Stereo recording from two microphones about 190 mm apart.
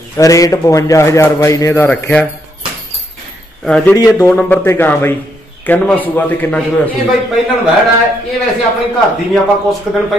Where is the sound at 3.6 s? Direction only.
5° left (ahead or behind).